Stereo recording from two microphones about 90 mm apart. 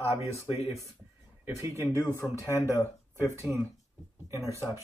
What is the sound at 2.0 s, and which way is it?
Speech, 35° left (ahead or behind).